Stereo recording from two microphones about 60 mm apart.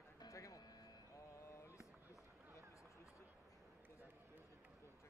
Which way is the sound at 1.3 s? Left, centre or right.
Left.